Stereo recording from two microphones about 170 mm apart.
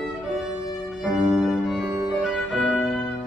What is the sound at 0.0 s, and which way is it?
Music, centre (ahead or behind).